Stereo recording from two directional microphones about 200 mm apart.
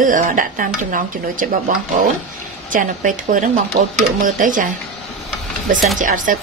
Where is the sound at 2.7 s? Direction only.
40° right (ahead or behind).